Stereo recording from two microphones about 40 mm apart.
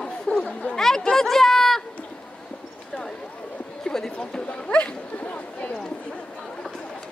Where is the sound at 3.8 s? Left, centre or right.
Centre.